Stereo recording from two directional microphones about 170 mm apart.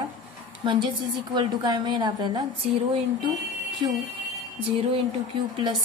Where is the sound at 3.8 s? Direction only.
25° right (ahead or behind).